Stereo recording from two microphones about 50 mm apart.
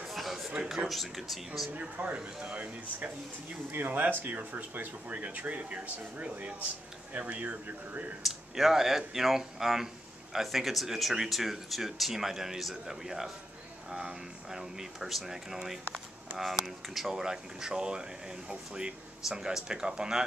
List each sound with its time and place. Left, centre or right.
0.0 s a sound: centre
0.7 s speech: centre
1.7 s speech: right
3.7 s speech: right
8.2 s speech: centre